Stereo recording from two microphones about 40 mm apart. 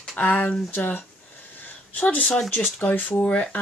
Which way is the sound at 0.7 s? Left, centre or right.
Left.